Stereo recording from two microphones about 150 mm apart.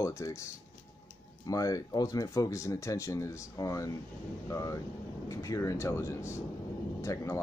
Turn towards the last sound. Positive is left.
turn(degrees=20)  # may be behind; listen again after turning